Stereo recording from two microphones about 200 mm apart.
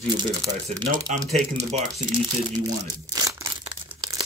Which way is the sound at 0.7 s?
30° right (ahead or behind).